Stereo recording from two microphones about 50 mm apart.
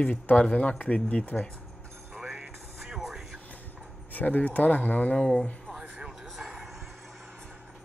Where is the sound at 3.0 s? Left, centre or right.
Centre.